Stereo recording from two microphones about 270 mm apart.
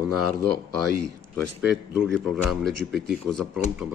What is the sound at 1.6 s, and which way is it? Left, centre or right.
Speech, centre.